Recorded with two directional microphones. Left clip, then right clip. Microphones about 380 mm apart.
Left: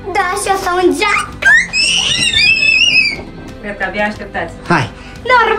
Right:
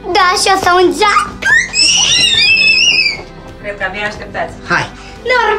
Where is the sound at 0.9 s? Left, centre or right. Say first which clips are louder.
Right 3 dB; centre.